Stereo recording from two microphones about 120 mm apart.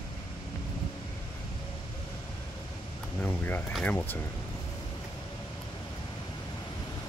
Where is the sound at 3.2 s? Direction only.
15° left (ahead or behind).